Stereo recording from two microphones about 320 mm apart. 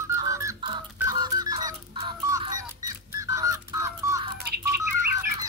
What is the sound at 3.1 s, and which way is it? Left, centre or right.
Music, centre.